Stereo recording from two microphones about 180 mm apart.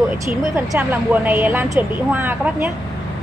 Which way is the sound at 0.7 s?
10° right (ahead or behind).